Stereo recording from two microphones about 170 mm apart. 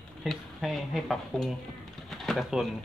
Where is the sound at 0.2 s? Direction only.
Centre (ahead or behind).